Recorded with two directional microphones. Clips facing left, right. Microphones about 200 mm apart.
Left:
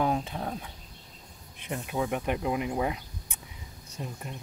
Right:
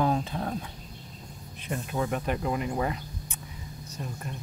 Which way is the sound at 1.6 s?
10° left (ahead or behind).